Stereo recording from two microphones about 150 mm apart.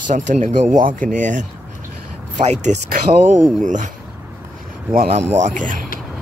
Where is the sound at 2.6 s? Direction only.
55° right (ahead or behind).